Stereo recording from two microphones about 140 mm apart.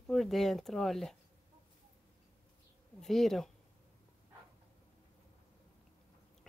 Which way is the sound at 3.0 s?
Centre (ahead or behind).